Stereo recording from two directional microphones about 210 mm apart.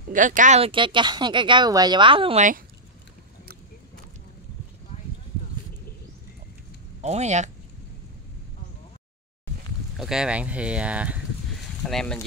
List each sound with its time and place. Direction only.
0.1 s speech: 40° right (ahead or behind)
7.0 s speech: 30° right (ahead or behind)
9.9 s speech: centre (ahead or behind)